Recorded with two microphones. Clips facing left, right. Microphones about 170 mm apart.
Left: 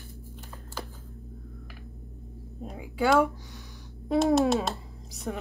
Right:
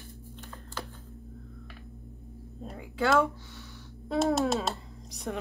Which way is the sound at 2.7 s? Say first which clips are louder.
Left 2 dB; 10° left (ahead or behind).